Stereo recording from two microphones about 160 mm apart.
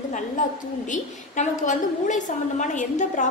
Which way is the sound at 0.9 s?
50° left (ahead or behind).